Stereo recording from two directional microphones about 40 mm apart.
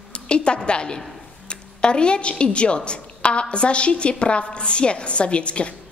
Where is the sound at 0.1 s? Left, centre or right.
Left.